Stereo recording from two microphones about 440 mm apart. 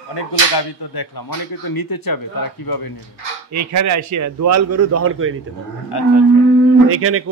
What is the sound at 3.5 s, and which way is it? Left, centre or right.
A man's voice, right.